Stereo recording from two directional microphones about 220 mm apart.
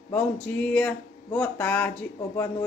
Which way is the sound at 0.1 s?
5° left (ahead or behind).